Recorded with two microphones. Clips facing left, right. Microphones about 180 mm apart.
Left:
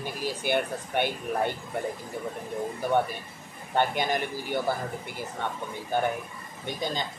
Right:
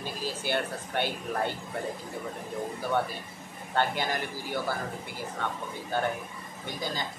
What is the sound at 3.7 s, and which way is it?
Speech, 20° left (ahead or behind).